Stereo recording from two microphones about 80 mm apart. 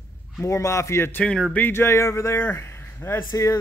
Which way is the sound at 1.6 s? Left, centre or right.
Left.